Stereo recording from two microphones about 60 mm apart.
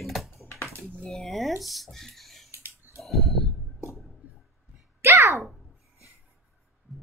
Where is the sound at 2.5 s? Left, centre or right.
Right.